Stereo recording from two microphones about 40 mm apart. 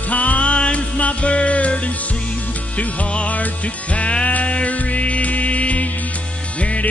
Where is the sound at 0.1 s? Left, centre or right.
Left.